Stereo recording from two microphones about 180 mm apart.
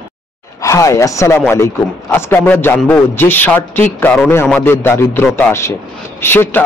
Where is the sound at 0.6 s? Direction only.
15° left (ahead or behind).